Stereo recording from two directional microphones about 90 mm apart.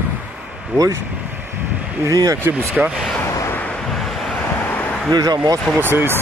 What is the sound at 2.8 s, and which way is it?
Speech, 15° right (ahead or behind).